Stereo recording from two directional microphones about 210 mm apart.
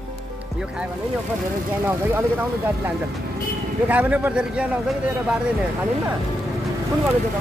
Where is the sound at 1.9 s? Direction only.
10° right (ahead or behind).